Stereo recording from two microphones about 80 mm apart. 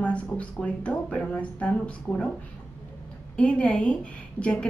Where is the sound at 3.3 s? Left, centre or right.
Centre.